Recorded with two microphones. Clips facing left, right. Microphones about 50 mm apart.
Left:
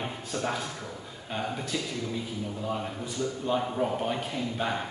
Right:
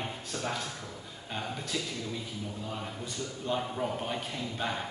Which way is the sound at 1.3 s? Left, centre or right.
Centre.